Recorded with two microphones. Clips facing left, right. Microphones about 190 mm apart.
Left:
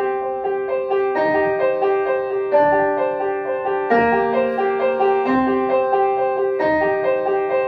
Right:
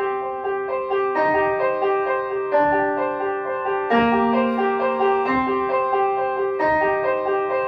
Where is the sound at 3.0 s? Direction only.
30° left (ahead or behind).